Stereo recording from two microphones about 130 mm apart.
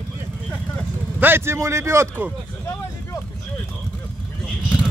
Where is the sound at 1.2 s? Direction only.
20° right (ahead or behind).